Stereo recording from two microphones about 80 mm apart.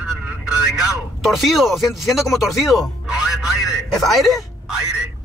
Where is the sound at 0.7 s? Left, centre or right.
Centre.